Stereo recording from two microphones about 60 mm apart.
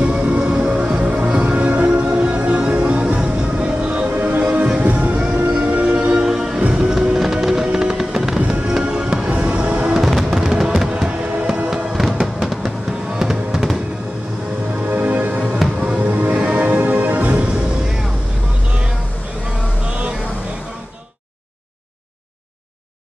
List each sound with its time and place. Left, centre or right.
0.0 s music: right
5.9 s music: centre
10.0 s fireworks: centre
10.5 s music: centre
14.9 s music: right